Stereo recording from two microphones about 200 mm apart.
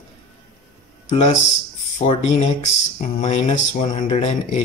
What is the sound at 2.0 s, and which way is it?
Speech, 35° left (ahead or behind).